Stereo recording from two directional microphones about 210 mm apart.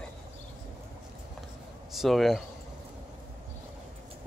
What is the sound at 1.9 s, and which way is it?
Speech, centre (ahead or behind).